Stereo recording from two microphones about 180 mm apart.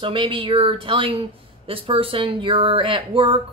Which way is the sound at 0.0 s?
30° right (ahead or behind).